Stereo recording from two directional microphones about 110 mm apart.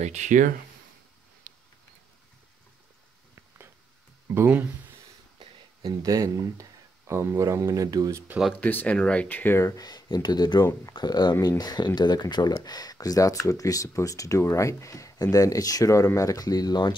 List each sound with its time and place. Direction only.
0.0 s speech: 90° right
4.3 s speech: 20° right (ahead or behind)
5.9 s speech: 30° right (ahead or behind)
8.5 s speech: 15° left (ahead or behind); by 16.9 s 40° left (ahead or behind)